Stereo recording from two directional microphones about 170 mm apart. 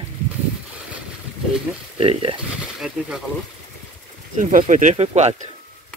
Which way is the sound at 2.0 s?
35° right (ahead or behind).